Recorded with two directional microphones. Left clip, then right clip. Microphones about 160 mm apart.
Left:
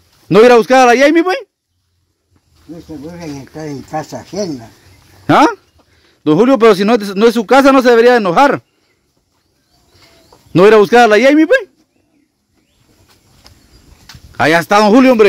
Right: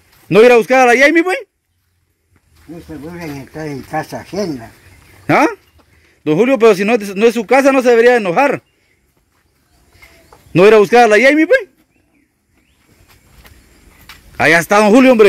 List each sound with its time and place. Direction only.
0.3 s a man's voice: 30° left (ahead or behind)
3.1 s speech: centre (ahead or behind)
5.2 s a man's voice: 25° left (ahead or behind)
10.5 s a man's voice: 25° left (ahead or behind)
14.0 s a man's voice: 15° left (ahead or behind)